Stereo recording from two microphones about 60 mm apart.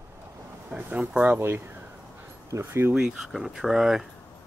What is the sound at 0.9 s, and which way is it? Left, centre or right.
Speech, right.